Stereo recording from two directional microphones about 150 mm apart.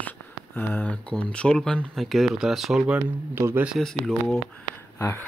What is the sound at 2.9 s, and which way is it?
Speech, 15° right (ahead or behind).